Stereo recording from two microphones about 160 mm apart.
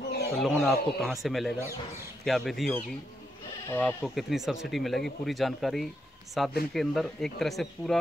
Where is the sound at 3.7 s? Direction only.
15° left (ahead or behind).